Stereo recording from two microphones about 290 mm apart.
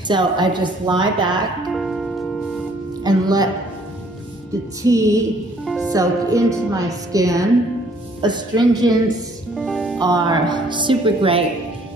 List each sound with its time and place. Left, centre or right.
0.1 s speech: centre
1.8 s music: centre
3.0 s speech: centre
4.8 s speech: centre
9.6 s music: centre
10.0 s speech: centre